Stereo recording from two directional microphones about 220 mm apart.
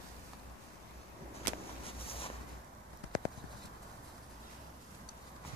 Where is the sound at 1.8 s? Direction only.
25° left (ahead or behind).